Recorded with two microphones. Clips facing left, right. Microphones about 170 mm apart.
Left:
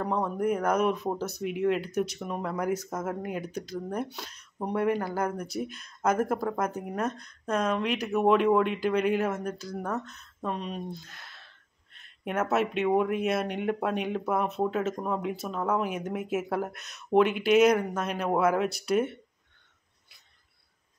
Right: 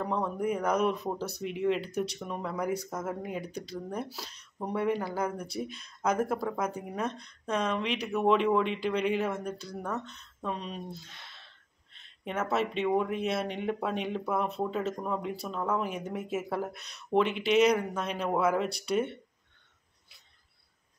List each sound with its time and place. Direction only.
0.0 s speech: 5° left (ahead or behind)